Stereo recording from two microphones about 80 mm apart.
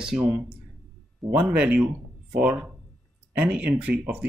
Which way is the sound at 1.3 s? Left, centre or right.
Centre.